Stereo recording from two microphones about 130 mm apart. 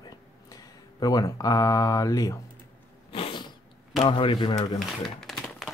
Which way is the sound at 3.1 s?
45° left (ahead or behind).